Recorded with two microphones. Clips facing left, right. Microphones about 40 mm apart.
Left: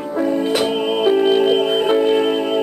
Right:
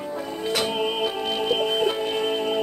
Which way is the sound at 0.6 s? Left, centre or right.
Centre.